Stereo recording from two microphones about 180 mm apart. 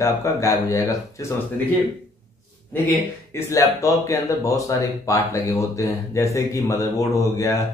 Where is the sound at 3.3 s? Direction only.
15° left (ahead or behind).